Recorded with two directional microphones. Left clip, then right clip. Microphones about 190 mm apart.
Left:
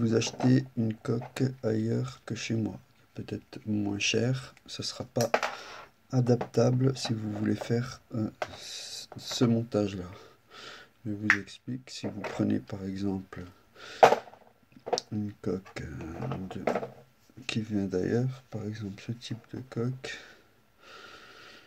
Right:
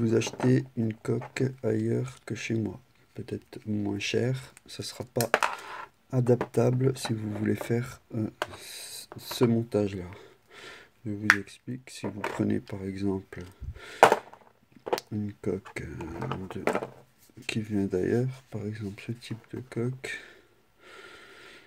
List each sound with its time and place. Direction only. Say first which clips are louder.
0.0 s speech: right 1 dB; 35° right (ahead or behind)
20.8 s snort: right 1 dB; 40° right (ahead or behind)